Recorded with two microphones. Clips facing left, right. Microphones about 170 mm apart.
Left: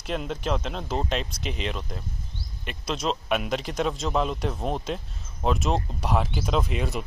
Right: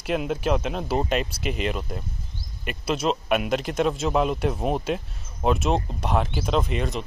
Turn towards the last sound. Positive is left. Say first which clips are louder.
# right 2 dB
turn(degrees=5)  # may be behind; listen again after turning